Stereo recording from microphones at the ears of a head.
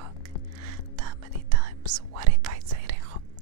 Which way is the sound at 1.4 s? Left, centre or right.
Right.